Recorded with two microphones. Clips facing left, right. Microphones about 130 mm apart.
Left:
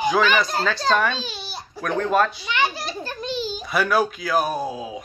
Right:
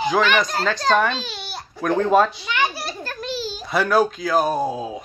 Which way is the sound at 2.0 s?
15° right (ahead or behind).